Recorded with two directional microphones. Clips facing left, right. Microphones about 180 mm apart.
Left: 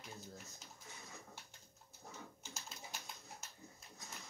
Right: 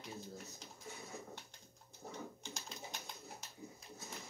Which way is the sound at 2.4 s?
5° left (ahead or behind).